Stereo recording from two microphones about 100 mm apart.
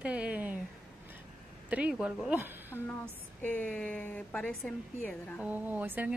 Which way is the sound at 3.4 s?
15° left (ahead or behind).